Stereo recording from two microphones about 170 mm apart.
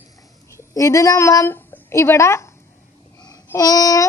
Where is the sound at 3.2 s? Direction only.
20° left (ahead or behind).